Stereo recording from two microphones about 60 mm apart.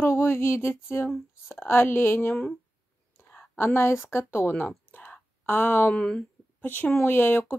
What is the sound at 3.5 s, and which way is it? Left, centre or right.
Speech, left.